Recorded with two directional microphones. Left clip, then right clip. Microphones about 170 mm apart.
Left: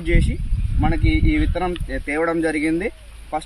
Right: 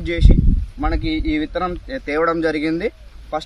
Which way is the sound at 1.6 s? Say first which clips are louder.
Right 1 dB; 10° right (ahead or behind).